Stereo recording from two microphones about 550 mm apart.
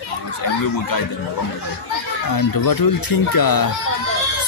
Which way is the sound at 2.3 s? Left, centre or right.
Left.